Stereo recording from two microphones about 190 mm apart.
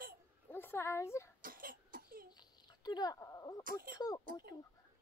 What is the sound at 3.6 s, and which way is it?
Speech, 50° right (ahead or behind).